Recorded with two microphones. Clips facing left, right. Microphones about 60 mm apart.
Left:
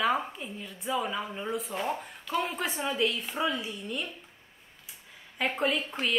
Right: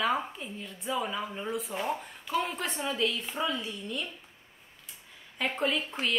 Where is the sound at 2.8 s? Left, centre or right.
Centre.